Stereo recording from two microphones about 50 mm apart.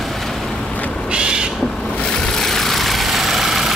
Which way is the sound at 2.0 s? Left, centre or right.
Centre.